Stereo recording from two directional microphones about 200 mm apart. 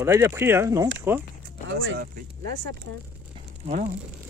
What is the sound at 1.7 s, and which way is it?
Speech, 70° right (ahead or behind).